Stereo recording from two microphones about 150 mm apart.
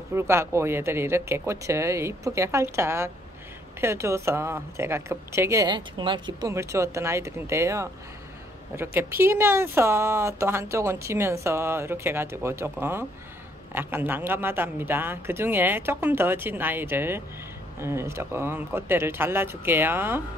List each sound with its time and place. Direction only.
0.1 s speech: 15° right (ahead or behind)
5.7 s speech: 30° right (ahead or behind)
6.5 s speech: 20° right (ahead or behind)